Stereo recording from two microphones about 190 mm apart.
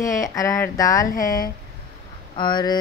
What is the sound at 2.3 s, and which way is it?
Speech, 25° left (ahead or behind).